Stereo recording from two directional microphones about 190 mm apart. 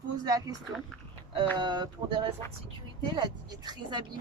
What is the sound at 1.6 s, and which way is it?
A woman's voice, 20° right (ahead or behind).